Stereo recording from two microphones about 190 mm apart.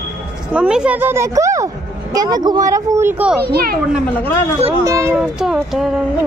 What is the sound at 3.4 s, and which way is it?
Speech, 55° right (ahead or behind).